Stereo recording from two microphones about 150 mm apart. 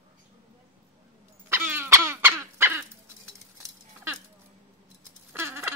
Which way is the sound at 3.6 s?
15° right (ahead or behind).